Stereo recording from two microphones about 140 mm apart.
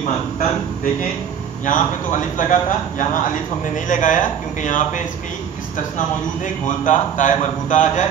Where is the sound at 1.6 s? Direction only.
70° left (ahead or behind).